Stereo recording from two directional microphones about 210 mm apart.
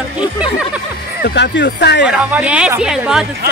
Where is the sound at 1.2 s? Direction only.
55° left (ahead or behind).